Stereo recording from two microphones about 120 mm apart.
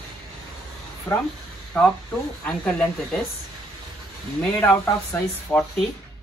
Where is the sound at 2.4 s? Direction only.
10° left (ahead or behind).